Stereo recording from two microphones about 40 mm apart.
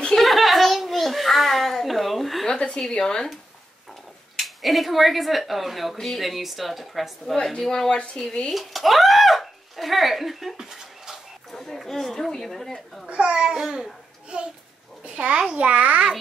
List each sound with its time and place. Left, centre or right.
0.2 s a sound: centre
2.4 s a sound: centre
2.9 s speech: centre
4.4 s speech: centre
7.5 s speech: centre
8.5 s speech: centre
11.5 s speech: centre
13.3 s a child's voice: centre; by 16.1 s right